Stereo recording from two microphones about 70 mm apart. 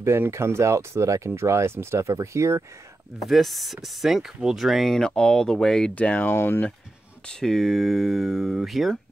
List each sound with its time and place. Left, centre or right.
0.0 s speech: right
3.3 s speech: centre
5.9 s speech: left
6.3 s speech: left
7.2 s speech: centre